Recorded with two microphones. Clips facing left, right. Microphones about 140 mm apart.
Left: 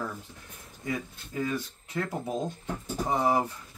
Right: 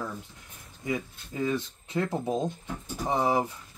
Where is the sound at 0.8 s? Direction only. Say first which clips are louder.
Right 2 dB; 20° right (ahead or behind).